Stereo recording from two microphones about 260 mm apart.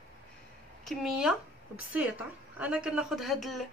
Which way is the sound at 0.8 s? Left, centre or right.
Centre.